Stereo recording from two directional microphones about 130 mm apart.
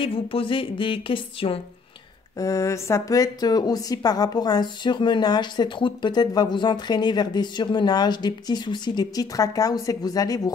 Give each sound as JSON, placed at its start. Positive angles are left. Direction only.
{"t": 0.0, "sound": "a woman's voice", "side_deg": 45}
{"t": 2.3, "sound": "a woman's voice", "side_deg": 25}